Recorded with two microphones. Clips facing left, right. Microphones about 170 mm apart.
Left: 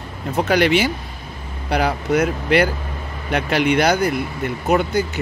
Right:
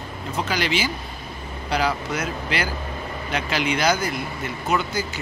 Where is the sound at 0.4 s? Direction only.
60° left (ahead or behind).